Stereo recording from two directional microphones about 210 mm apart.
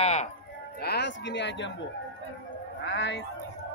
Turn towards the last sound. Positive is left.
turn(degrees=55)  # may be behind; listen again after turning